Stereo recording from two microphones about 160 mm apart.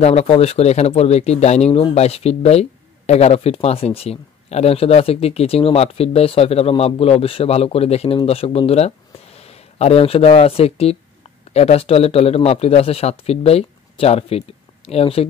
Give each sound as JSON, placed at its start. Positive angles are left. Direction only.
{"t": 0.0, "sound": "speech", "side_deg": 40}